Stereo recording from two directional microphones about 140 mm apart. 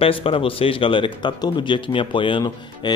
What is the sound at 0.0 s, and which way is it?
Speech, 40° left (ahead or behind).